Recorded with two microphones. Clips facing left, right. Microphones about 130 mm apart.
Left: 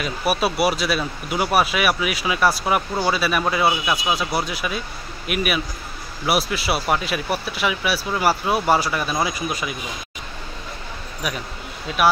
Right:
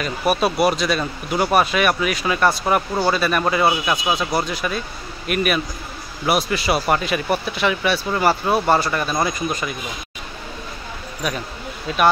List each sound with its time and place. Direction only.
0.0 s speech: 5° left (ahead or behind)
11.2 s speech: 5° left (ahead or behind)